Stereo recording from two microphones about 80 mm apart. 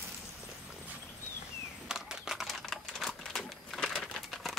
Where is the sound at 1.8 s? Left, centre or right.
Centre.